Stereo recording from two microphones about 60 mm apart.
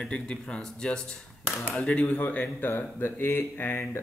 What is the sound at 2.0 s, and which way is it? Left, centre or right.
Speech, left.